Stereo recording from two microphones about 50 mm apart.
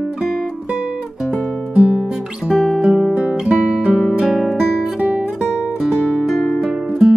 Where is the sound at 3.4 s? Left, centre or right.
Right.